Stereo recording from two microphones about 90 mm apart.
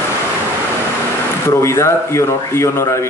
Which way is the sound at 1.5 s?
30° left (ahead or behind).